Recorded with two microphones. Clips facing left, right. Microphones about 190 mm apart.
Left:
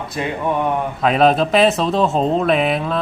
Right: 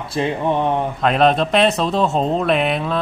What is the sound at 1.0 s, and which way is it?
Speech, centre (ahead or behind).